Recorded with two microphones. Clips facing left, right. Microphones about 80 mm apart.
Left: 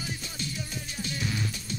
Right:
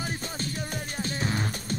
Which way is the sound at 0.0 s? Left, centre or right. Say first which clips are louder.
Right 4 dB; right.